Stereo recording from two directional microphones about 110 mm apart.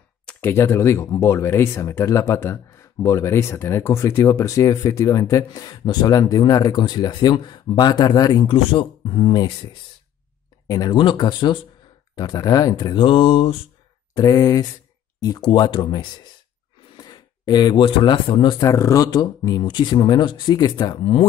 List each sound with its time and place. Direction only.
0.4 s speech: 25° left (ahead or behind)
8.5 s speech: 55° left (ahead or behind)
14.1 s speech: 35° left (ahead or behind)
18.7 s speech: 30° left (ahead or behind)